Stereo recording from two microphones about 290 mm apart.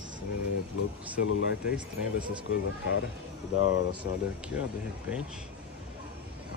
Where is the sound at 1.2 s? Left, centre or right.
Left.